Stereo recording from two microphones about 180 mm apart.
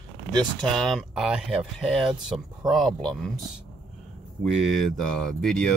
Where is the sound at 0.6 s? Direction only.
Centre (ahead or behind).